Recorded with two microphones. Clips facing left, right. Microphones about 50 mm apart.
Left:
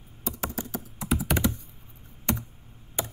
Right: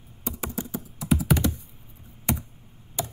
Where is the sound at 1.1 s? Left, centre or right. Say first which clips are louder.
Right 3 dB; centre.